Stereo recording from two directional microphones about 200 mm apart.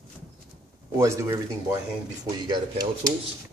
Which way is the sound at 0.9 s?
15° right (ahead or behind).